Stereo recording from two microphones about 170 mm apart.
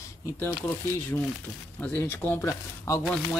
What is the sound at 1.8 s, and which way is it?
Speech, 10° left (ahead or behind).